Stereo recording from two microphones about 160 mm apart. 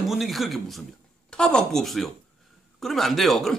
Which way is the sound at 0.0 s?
Centre (ahead or behind).